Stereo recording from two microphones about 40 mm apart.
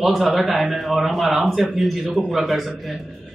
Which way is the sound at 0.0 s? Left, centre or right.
Centre.